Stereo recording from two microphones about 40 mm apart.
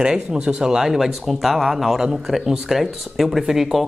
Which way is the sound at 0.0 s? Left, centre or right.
Right.